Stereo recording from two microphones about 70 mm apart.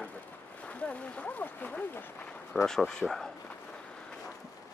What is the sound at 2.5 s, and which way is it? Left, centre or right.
Speech, centre.